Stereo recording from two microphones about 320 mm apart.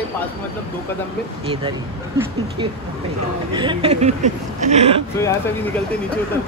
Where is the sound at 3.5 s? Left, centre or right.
Centre.